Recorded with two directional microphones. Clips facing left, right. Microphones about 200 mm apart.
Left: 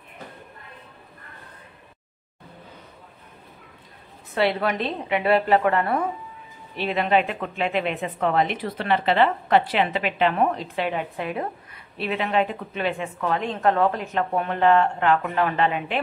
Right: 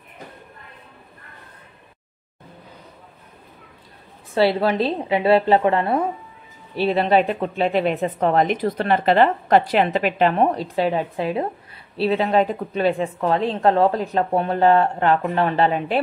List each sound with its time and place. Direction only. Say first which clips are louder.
4.3 s a woman's voice: right 5 dB; 30° right (ahead or behind)